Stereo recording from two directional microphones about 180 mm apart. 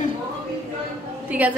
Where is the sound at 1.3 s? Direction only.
10° right (ahead or behind).